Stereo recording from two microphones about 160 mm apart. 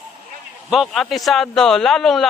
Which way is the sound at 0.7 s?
Centre (ahead or behind).